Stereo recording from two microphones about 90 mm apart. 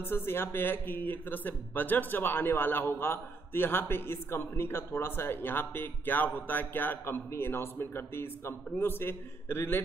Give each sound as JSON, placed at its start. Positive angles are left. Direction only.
{"t": 0.0, "sound": "speech", "side_deg": 25}